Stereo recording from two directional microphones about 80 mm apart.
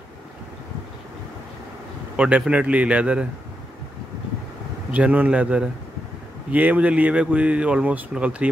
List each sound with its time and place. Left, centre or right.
2.1 s speech: centre
4.9 s speech: centre